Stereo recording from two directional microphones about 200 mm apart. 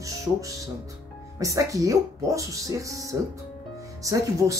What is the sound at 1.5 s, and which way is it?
Speech, 15° right (ahead or behind).